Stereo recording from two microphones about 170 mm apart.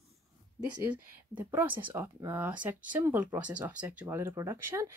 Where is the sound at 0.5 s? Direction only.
10° right (ahead or behind).